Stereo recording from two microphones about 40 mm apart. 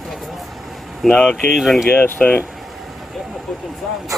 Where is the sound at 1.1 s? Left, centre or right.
Left.